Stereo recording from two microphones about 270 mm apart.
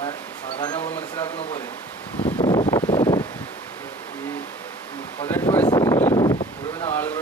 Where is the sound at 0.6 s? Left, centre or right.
Centre.